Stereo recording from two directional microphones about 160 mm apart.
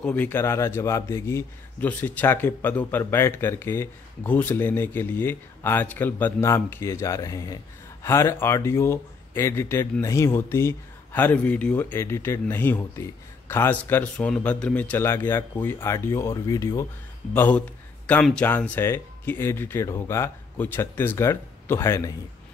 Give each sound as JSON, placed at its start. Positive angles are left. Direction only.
{"t": 0.0, "sound": "a man's voice", "side_deg": 10}